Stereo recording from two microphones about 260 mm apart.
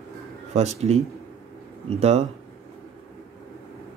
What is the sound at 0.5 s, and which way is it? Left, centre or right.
Speech, right.